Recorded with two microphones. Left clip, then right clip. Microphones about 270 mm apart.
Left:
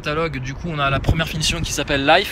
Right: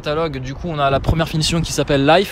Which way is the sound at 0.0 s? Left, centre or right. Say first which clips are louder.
Right 2 dB; centre.